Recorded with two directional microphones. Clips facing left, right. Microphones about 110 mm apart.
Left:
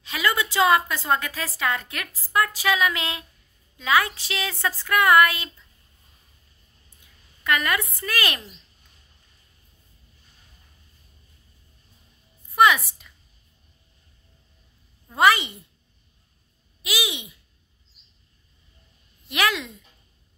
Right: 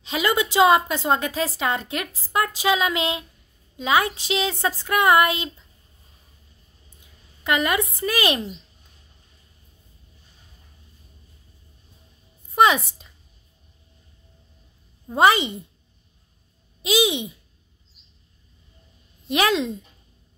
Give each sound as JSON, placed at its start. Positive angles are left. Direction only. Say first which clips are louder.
{"t": 0.0, "sound": "a woman's voice", "louder": "right 3 dB", "side_deg": -20}
{"t": 7.4, "sound": "a woman's voice", "louder": "right 2 dB", "side_deg": -20}
{"t": 12.5, "sound": "a woman's voice", "louder": "right 1 dB", "side_deg": -25}
{"t": 15.0, "sound": "a woman's voice", "louder": "right 2 dB", "side_deg": -25}
{"t": 16.8, "sound": "a woman's voice", "louder": "right 9 dB", "side_deg": -25}
{"t": 19.2, "sound": "a woman's voice", "louder": "right 4 dB", "side_deg": -25}